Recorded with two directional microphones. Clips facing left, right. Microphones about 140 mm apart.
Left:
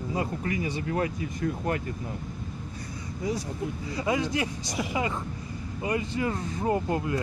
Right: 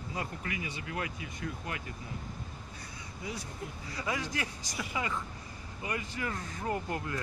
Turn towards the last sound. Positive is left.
turn(degrees=25)  # may be behind; listen again after turning